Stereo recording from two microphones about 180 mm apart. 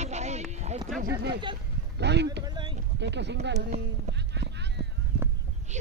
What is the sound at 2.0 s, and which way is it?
Speech, 70° right (ahead or behind).